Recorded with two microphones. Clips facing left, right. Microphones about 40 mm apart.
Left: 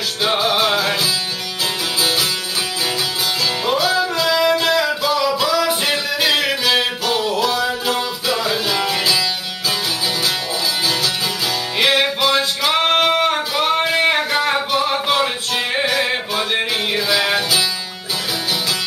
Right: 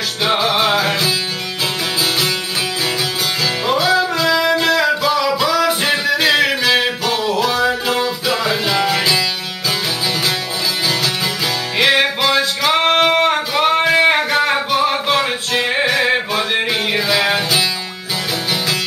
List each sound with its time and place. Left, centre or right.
0.2 s music: centre
3.6 s music: centre
12.0 s music: centre